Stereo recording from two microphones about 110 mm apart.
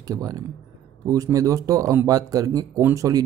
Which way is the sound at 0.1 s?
35° right (ahead or behind).